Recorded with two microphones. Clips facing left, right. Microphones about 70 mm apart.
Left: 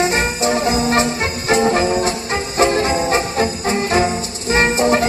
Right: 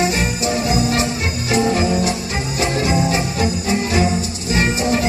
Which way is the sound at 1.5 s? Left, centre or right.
Left.